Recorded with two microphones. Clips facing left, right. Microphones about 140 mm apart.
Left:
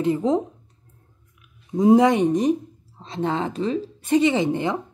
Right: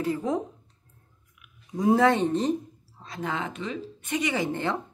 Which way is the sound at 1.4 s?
25° left (ahead or behind).